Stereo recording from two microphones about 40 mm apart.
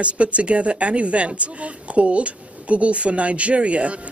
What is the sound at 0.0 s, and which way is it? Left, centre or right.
Speech, right.